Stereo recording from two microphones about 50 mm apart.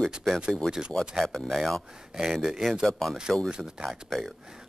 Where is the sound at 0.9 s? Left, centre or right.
Centre.